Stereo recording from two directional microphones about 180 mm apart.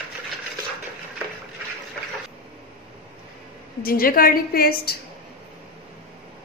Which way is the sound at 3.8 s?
55° left (ahead or behind).